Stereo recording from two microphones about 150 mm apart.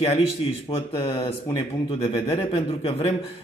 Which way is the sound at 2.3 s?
40° left (ahead or behind).